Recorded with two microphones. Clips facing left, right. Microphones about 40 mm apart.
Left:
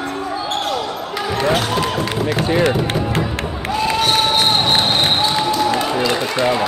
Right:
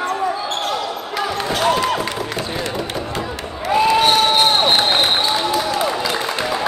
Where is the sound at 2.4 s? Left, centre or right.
Left.